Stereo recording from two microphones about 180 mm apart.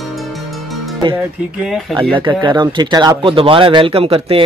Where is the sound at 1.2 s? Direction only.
5° right (ahead or behind).